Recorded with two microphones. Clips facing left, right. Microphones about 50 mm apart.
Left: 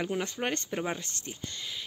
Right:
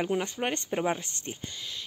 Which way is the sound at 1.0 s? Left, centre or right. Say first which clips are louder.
Right 2 dB; right.